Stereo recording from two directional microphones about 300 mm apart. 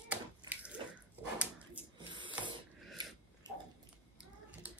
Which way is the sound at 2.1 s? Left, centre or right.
Centre.